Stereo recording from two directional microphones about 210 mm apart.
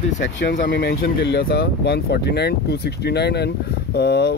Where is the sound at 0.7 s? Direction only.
50° left (ahead or behind).